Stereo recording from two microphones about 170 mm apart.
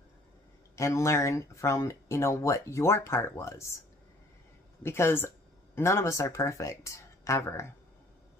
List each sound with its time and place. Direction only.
0.7 s speech: 15° left (ahead or behind)
4.8 s speech: 15° left (ahead or behind)